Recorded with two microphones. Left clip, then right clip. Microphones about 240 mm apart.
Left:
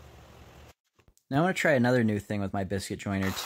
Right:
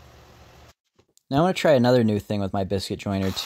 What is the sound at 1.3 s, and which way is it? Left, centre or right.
Speech, centre.